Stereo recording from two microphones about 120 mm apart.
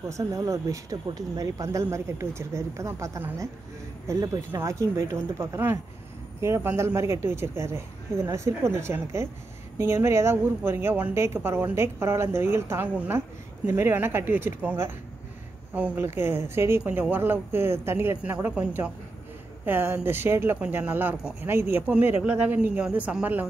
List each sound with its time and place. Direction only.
0.1 s a woman's voice: 25° right (ahead or behind); by 16.0 s 10° right (ahead or behind)
16.0 s speech: 20° right (ahead or behind)